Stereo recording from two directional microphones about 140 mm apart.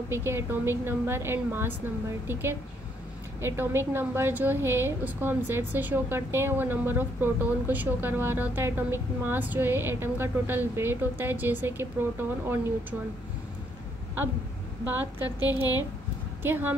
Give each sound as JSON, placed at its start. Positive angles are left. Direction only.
{"t": 0.1, "sound": "a woman's voice", "side_deg": -15}
{"t": 15.2, "sound": "a woman's voice", "side_deg": 30}
{"t": 16.4, "sound": "a woman's voice", "side_deg": -15}